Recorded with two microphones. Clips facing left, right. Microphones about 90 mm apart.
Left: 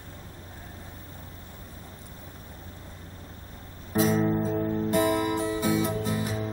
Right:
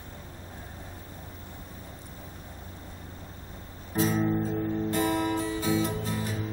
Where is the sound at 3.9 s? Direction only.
15° left (ahead or behind).